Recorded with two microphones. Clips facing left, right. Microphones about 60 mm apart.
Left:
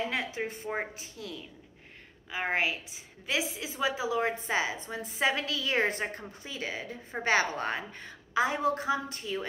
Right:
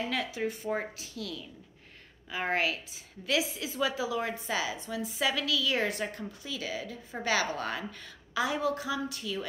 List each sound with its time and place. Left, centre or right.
0.1 s a woman's voice: left